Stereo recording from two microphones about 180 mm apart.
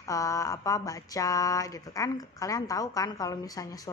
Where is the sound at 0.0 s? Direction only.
15° left (ahead or behind).